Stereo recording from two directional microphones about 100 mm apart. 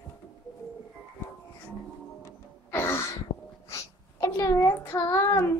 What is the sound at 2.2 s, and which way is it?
Music, 25° left (ahead or behind).